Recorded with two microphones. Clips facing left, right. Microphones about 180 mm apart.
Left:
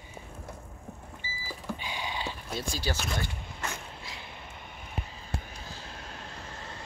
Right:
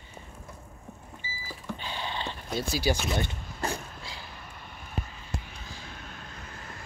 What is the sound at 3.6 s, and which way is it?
Vehicle, 30° right (ahead or behind).